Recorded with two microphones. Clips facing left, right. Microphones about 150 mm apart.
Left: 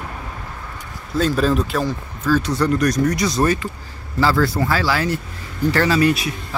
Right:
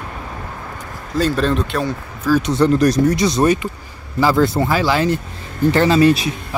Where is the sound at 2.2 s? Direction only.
10° right (ahead or behind).